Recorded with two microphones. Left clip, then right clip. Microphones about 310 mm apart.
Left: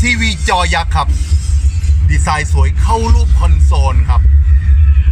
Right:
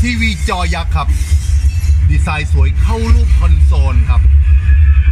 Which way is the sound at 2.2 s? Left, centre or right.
Left.